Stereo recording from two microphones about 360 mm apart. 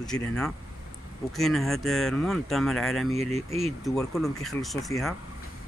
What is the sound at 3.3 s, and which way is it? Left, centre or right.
Speech, centre.